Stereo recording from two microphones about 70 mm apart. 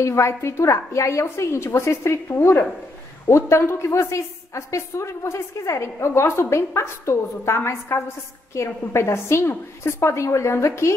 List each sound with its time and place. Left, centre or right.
0.0 s a woman's voice: left